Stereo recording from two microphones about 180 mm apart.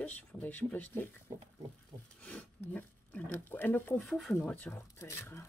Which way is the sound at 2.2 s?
5° left (ahead or behind).